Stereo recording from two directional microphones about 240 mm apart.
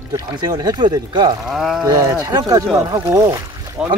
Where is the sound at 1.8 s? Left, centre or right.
Centre.